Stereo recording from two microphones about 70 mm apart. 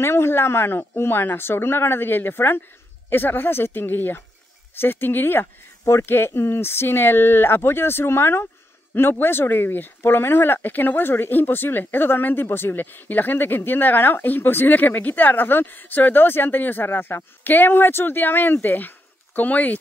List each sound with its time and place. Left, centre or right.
0.0 s a woman's voice: left